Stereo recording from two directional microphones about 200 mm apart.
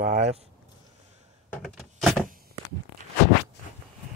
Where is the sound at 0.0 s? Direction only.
40° right (ahead or behind).